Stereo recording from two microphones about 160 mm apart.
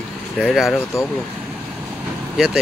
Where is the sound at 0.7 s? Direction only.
15° left (ahead or behind).